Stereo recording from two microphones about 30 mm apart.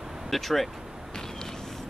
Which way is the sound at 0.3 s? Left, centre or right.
Centre.